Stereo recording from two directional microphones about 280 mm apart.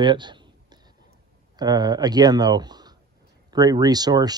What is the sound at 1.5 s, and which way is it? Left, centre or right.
Speech, centre.